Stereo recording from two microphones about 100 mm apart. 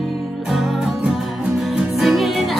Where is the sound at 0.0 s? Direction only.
Centre (ahead or behind).